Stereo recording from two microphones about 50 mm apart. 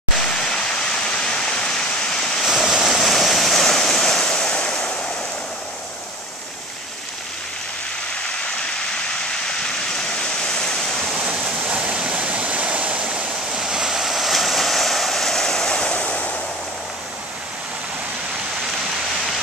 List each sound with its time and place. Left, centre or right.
0.2 s waterfall: centre
2.4 s waves: centre
9.7 s vehicle: centre
11.6 s waterfall: right
11.9 s waterfall: centre
15.9 s a sound: left